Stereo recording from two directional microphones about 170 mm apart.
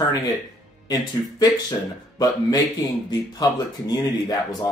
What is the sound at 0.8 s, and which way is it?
Speech, 20° left (ahead or behind).